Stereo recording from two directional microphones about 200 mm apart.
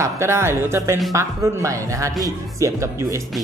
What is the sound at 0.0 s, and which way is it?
Speech, 15° right (ahead or behind).